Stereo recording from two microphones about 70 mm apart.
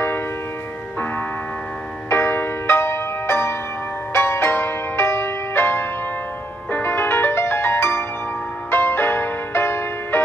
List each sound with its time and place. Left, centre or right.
2.0 s music: left